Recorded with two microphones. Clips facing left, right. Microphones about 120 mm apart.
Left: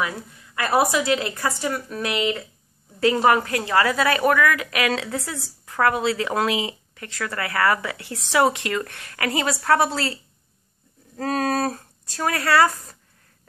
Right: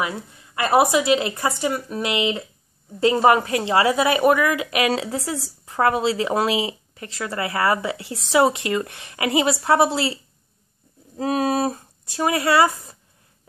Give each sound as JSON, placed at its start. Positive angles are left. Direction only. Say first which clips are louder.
{"t": 0.0, "sound": "a woman's voice", "louder": "right 1 dB", "side_deg": -20}
{"t": 11.1, "sound": "speech", "louder": "right 2 dB", "side_deg": -15}